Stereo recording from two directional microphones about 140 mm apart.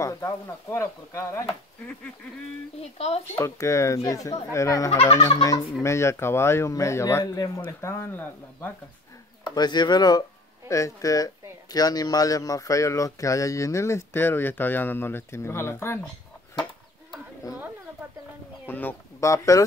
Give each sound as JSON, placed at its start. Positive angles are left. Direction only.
{"t": 0.0, "sound": "speech", "side_deg": 20}
{"t": 2.8, "sound": "speech", "side_deg": 45}
{"t": 3.3, "sound": "speech", "side_deg": 20}
{"t": 4.9, "sound": "speech", "side_deg": 45}
{"t": 5.8, "sound": "speech", "side_deg": 20}
{"t": 9.4, "sound": "speech", "side_deg": 30}
{"t": 18.7, "sound": "speech", "side_deg": 15}